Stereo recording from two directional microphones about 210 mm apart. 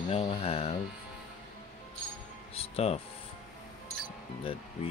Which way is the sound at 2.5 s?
30° left (ahead or behind).